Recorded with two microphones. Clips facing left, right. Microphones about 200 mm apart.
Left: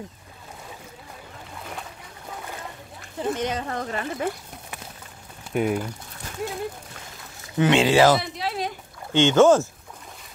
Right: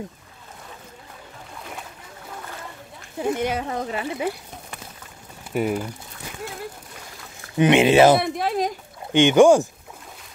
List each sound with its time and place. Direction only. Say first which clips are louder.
3.2 s speech: right 3 dB; 10° right (ahead or behind)
5.5 s speech: even; 5° right (ahead or behind)
7.5 s speech: right 3 dB; 20° right (ahead or behind)
8.2 s speech: right 6 dB; 50° right (ahead or behind)
9.1 s speech: right 2 dB; 15° right (ahead or behind)